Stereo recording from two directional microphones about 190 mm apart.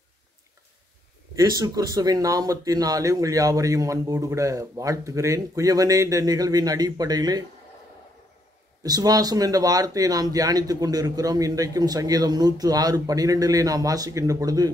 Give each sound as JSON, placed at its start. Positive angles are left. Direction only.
{"t": 1.3, "sound": "speech", "side_deg": -20}
{"t": 8.8, "sound": "speech", "side_deg": -20}